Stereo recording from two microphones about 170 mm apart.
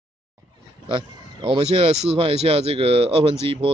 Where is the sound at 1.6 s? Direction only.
40° right (ahead or behind).